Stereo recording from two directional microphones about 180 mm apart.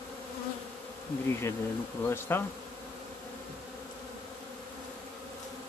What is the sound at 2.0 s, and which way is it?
Speech, 15° left (ahead or behind).